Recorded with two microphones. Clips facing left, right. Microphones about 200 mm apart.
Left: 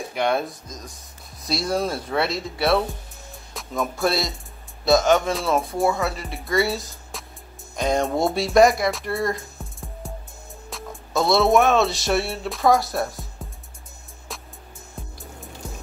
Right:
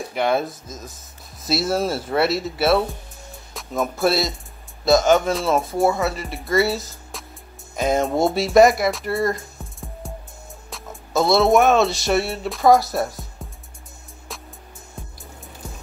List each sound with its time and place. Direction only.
0.1 s speech: centre (ahead or behind)
3.5 s music: centre (ahead or behind)
4.8 s speech: centre (ahead or behind)
10.7 s music: centre (ahead or behind)